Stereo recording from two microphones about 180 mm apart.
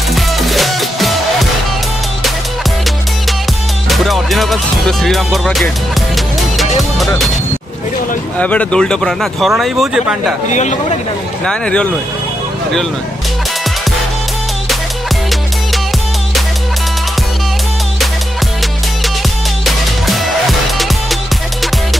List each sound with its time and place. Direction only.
0.1 s music: centre (ahead or behind)
3.9 s music: centre (ahead or behind)
8.4 s speech: 5° left (ahead or behind)
10.5 s speech: 40° left (ahead or behind)
11.4 s speech: 5° left (ahead or behind)
19.6 s music: centre (ahead or behind)